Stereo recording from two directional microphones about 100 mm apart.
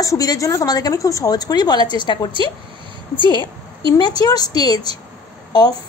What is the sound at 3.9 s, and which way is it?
A woman's voice, 45° left (ahead or behind).